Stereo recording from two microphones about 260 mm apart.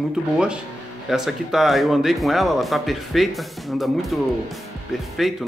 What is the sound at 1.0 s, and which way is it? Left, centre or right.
Speech, centre.